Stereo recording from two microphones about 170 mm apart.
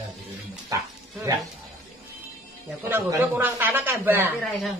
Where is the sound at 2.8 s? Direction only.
15° right (ahead or behind).